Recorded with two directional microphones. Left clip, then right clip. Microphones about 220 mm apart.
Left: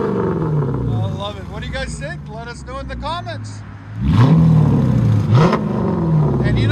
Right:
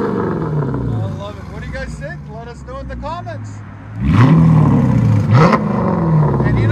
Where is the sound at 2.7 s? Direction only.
Centre (ahead or behind).